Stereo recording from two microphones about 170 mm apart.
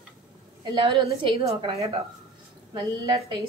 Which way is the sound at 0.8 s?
30° right (ahead or behind).